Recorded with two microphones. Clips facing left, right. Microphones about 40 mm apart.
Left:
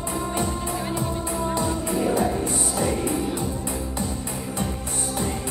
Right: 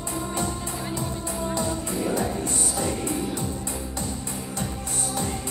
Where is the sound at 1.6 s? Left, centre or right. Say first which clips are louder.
Left 3 dB; centre.